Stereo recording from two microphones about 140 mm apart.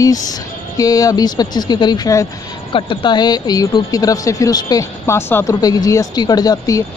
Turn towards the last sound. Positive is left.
turn(degrees=25)  # may be behind; listen again after turning